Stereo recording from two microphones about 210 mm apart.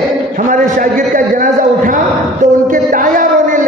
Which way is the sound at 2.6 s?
40° right (ahead or behind).